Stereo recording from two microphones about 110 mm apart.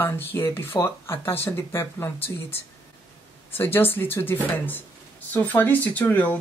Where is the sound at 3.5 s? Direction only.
20° left (ahead or behind).